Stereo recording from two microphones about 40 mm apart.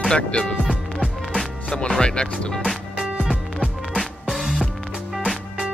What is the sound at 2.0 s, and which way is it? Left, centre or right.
Speech, left.